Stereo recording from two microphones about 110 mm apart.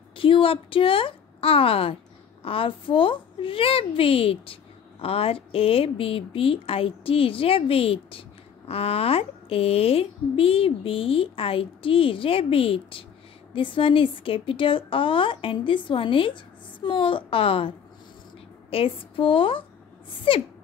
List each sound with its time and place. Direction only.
0.1 s a woman's voice: 55° left (ahead or behind)